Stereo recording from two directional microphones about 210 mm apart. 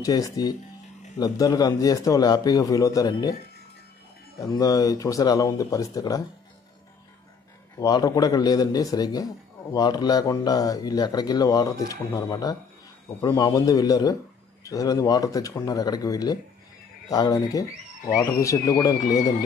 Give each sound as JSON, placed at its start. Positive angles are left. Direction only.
{"t": 0.0, "sound": "a man's voice", "side_deg": 15}
{"t": 4.4, "sound": "a man's voice", "side_deg": 15}
{"t": 7.8, "sound": "a man's voice", "side_deg": 15}